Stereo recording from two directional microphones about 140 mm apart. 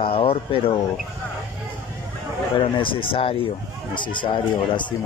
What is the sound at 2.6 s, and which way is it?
Speech, 40° left (ahead or behind).